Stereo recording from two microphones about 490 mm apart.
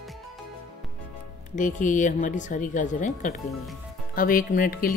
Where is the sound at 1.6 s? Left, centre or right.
Centre.